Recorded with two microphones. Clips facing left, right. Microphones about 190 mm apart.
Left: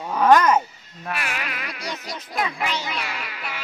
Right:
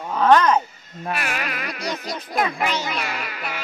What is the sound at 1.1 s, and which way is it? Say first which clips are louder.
Speech: right 2 dB; 45° right (ahead or behind).